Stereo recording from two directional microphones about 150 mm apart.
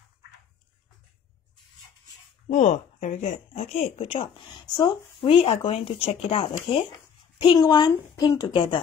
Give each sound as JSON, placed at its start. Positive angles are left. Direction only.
{"t": 2.5, "sound": "a woman's voice", "side_deg": 55}